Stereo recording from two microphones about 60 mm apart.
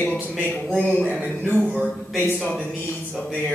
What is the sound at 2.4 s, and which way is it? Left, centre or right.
Speech, centre.